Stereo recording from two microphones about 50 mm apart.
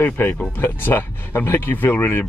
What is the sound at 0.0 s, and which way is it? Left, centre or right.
Speech, left.